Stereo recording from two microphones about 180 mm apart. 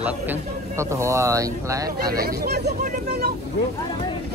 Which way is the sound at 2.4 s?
65° right (ahead or behind).